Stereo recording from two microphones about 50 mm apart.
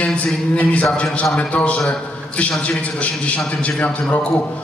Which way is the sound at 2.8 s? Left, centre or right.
Left.